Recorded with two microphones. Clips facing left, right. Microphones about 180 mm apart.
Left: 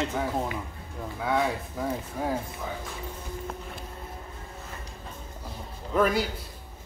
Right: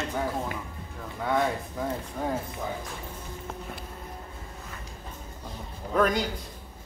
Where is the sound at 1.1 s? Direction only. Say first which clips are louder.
Even; centre (ahead or behind).